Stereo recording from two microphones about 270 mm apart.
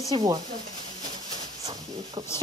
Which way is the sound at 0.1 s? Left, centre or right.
Centre.